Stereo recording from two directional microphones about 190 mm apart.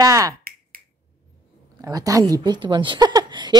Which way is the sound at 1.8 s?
20° right (ahead or behind).